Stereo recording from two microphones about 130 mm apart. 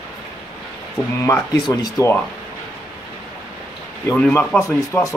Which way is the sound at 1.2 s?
25° left (ahead or behind).